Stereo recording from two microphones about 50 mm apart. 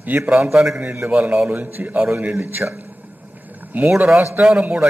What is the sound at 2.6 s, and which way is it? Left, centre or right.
Speech, centre.